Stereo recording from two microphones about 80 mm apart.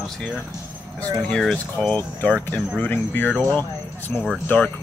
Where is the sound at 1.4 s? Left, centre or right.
Centre.